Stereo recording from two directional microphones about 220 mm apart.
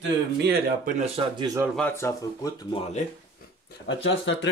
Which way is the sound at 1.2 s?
20° right (ahead or behind).